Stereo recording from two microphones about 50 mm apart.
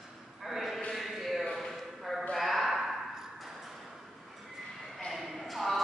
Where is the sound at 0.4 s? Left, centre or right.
Centre.